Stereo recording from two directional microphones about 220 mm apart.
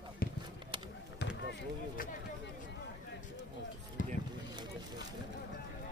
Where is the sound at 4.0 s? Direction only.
35° left (ahead or behind).